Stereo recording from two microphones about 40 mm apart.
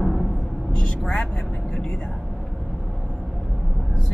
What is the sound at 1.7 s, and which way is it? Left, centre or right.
Whispering, left.